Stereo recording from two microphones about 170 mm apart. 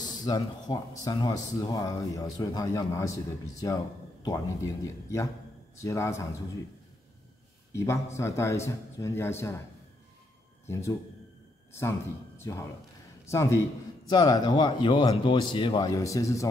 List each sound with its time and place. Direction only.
0.0 s a man's voice: 25° left (ahead or behind)
7.7 s a man's voice: 15° left (ahead or behind)
10.7 s a man's voice: 15° left (ahead or behind)
12.4 s speech: 20° left (ahead or behind)